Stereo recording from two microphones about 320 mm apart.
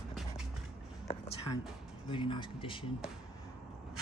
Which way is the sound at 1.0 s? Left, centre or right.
Centre.